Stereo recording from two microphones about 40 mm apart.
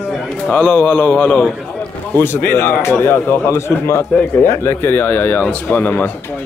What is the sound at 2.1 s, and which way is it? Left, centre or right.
Speech, left.